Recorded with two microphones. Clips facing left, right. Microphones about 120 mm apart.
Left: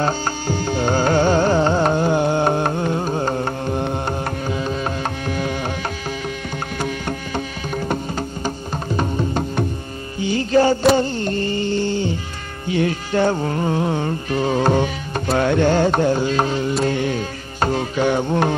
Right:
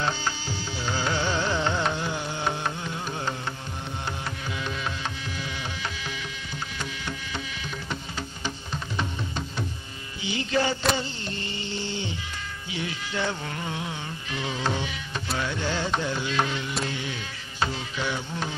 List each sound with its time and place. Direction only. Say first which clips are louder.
0.0 s music: left 8 dB; 50° left (ahead or behind)
4.5 s music: left 8 dB; 40° left (ahead or behind)
6.8 s music: left 12 dB; 50° left (ahead or behind)
11.0 s a sound: left 13 dB; 50° left (ahead or behind)
12.6 s music: left 15 dB; 50° left (ahead or behind)